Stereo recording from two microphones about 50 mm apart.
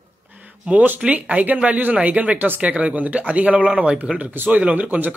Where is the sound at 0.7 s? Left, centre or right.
Right.